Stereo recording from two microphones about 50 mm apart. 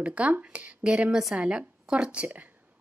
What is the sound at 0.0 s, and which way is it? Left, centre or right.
A woman's voice, right.